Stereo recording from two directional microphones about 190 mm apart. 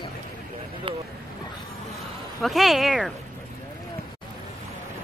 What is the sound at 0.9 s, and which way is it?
Speech, 30° right (ahead or behind).